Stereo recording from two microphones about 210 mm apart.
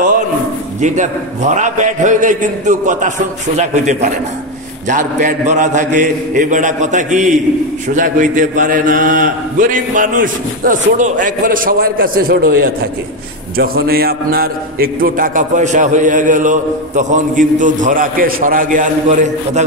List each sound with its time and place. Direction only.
0.7 s a man's voice: 35° right (ahead or behind)